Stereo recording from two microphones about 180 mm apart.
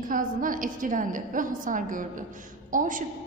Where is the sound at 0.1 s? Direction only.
50° right (ahead or behind).